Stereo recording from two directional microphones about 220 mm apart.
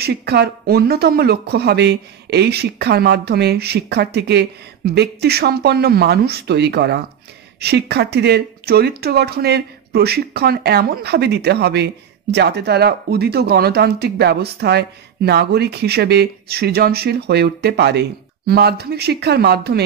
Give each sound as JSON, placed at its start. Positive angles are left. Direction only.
{"t": 0.0, "sound": "speech", "side_deg": -50}